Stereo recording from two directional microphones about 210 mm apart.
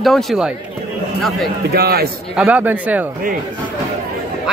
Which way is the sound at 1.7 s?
50° right (ahead or behind).